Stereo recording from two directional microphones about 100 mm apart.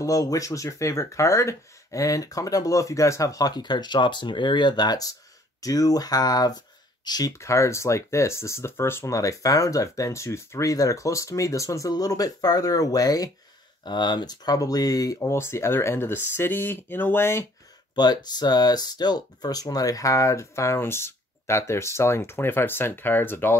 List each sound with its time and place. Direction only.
0.0 s speech: 35° left (ahead or behind)
17.9 s speech: 45° left (ahead or behind); by 23.5 s 20° left (ahead or behind)